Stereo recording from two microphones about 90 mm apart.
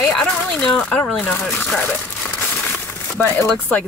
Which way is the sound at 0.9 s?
20° left (ahead or behind).